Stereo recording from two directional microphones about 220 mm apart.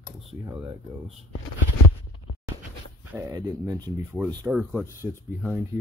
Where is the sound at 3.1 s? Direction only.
15° right (ahead or behind).